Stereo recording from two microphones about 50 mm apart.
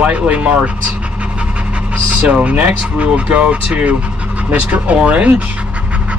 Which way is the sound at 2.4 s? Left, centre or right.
Right.